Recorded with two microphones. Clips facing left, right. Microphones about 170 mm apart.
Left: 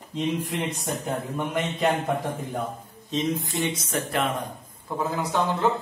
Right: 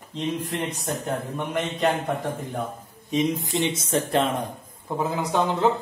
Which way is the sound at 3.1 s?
15° right (ahead or behind).